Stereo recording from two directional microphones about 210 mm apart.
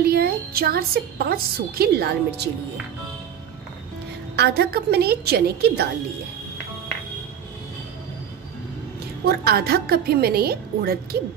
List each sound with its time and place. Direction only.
0.0 s a woman's voice: 45° right (ahead or behind)
4.4 s a woman's voice: 50° right (ahead or behind)
9.2 s a woman's voice: 50° right (ahead or behind)